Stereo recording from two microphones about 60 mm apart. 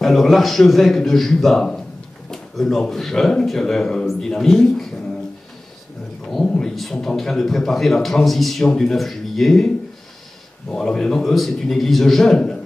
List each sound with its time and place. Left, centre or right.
0.0 s a man's voice: centre
2.3 s a sound: centre
2.9 s a man's voice: centre
6.6 s a man's voice: centre
10.7 s a man's voice: centre